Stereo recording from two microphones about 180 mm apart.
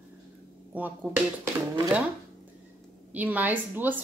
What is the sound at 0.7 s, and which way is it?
Speech, 10° right (ahead or behind).